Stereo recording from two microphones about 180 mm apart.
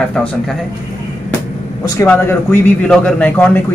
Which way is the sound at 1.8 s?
15° left (ahead or behind).